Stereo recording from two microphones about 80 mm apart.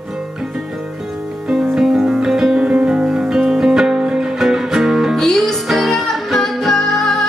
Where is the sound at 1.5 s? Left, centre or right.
Centre.